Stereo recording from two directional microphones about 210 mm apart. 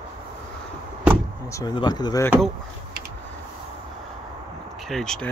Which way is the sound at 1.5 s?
20° left (ahead or behind).